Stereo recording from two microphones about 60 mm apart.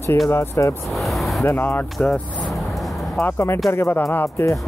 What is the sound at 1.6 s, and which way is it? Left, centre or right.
Speech, left.